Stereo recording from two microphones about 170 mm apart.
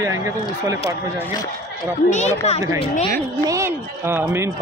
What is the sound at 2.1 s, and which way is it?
Speech, 40° left (ahead or behind).